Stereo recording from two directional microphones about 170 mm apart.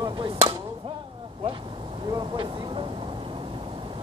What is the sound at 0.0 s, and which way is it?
Chop, 30° right (ahead or behind).